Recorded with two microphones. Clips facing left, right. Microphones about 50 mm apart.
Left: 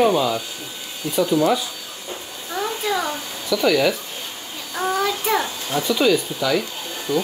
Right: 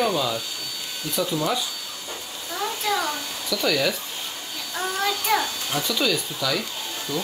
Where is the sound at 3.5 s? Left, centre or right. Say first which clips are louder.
Left 6 dB; centre.